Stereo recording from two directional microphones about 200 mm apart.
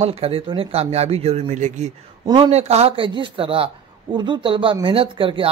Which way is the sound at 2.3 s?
20° right (ahead or behind).